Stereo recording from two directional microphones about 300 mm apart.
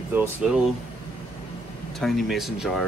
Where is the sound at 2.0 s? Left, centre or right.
Centre.